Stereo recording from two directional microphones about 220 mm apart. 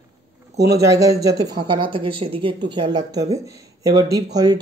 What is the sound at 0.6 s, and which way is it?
Speech, 15° right (ahead or behind).